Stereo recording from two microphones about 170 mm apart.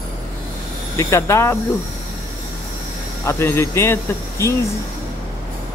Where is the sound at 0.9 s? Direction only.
15° left (ahead or behind).